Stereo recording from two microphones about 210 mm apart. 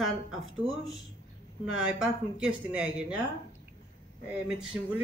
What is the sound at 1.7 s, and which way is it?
Speech, 5° right (ahead or behind).